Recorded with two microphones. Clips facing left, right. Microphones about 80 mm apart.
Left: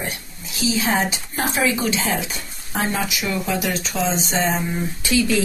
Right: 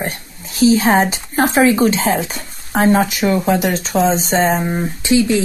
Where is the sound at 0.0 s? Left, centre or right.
Right.